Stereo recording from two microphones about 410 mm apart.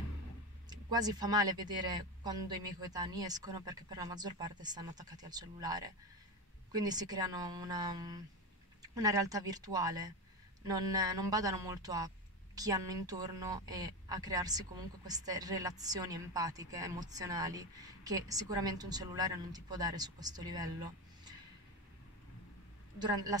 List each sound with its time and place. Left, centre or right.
0.7 s a woman's voice: centre